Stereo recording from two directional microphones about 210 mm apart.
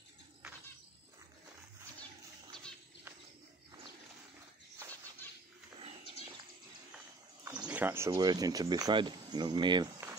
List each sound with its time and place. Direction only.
7.6 s speech: 10° right (ahead or behind)